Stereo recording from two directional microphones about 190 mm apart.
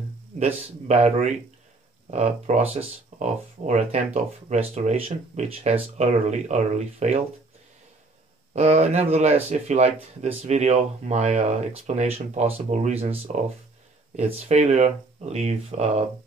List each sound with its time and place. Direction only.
0.8 s speech: 35° right (ahead or behind)
8.5 s speech: 35° right (ahead or behind)